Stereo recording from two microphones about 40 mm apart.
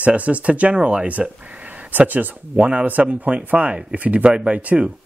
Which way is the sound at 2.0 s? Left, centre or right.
Right.